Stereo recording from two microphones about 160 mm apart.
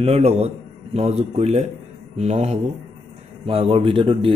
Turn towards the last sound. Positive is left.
turn(degrees=-35)  # may be behind; listen again after turning